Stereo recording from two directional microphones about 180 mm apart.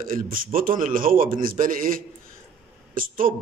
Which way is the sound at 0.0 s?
50° right (ahead or behind).